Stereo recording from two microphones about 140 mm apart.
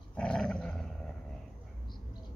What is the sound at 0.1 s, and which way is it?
Dog, 10° left (ahead or behind).